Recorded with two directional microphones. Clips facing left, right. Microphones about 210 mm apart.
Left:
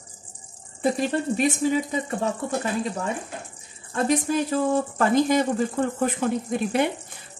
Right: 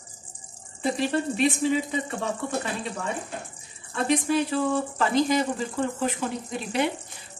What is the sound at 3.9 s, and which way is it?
Speech, 45° left (ahead or behind).